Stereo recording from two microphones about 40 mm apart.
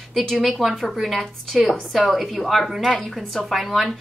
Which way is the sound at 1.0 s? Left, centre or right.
Centre.